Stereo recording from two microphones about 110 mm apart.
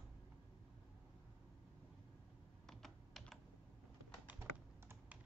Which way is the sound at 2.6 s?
5° left (ahead or behind).